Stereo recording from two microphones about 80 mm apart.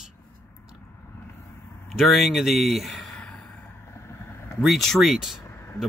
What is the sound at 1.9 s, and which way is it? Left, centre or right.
Speech, centre.